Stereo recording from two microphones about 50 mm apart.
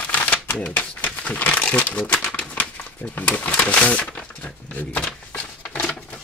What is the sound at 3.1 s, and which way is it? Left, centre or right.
Speech, left.